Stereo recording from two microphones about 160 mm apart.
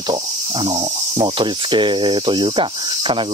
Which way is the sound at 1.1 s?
30° right (ahead or behind).